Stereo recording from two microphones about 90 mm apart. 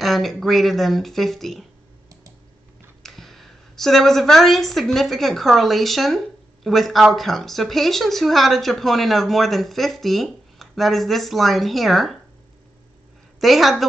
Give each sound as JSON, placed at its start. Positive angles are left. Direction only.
{"t": 0.0, "sound": "a woman's voice", "side_deg": 0}
{"t": 3.0, "sound": "a woman's voice", "side_deg": 0}
{"t": 13.4, "sound": "a woman's voice", "side_deg": 0}